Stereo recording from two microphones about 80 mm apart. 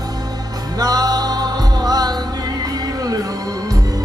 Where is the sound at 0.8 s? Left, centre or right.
Right.